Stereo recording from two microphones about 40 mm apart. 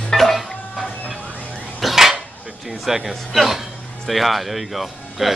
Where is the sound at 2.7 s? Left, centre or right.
Centre.